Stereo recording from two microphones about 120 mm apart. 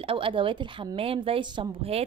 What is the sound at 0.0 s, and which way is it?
Speech, 50° right (ahead or behind).